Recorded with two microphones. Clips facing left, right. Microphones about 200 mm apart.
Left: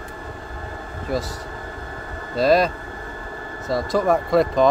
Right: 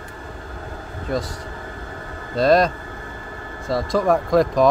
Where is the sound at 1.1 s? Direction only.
5° left (ahead or behind).